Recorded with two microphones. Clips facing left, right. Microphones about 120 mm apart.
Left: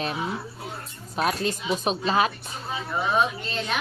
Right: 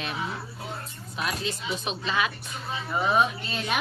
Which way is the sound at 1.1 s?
45° left (ahead or behind).